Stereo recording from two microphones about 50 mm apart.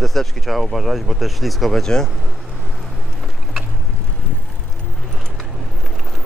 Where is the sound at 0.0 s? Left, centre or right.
Centre.